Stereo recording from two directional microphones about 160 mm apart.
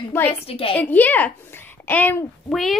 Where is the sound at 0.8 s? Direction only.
10° left (ahead or behind).